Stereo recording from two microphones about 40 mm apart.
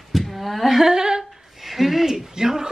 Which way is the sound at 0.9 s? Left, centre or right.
Centre.